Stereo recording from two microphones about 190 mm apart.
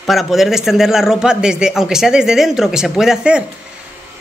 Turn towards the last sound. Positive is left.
turn(degrees=-5)  # may be behind; listen again after turning